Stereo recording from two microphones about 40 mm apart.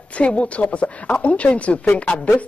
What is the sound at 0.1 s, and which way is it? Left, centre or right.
Speech, left.